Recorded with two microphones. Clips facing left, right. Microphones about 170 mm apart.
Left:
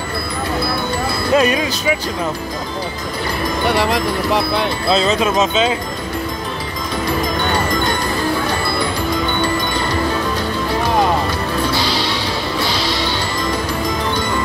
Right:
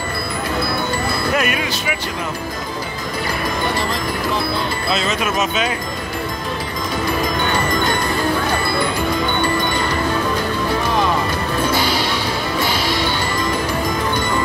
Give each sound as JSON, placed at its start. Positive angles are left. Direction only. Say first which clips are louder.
{"t": 1.3, "sound": "speech", "louder": "left 9 dB", "side_deg": 30}
{"t": 3.7, "sound": "speech", "louder": "left 5 dB", "side_deg": 70}
{"t": 4.8, "sound": "speech", "louder": "left 6 dB", "side_deg": 35}
{"t": 11.8, "sound": "music", "louder": "even", "side_deg": -50}